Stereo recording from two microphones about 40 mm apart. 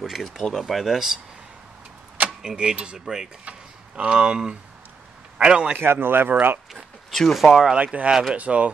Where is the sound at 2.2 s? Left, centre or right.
Right.